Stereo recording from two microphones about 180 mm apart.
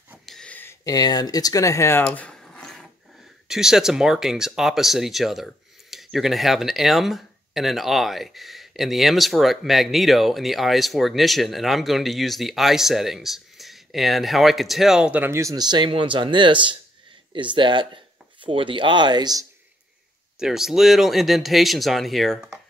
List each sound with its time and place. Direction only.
0.3 s a sound: 5° left (ahead or behind)
3.4 s speech: 5° right (ahead or behind); by 19.4 s 25° right (ahead or behind)
20.3 s speech: centre (ahead or behind)